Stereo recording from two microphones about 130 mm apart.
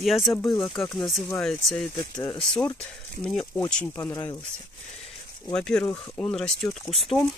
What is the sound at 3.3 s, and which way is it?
Speech, 5° left (ahead or behind).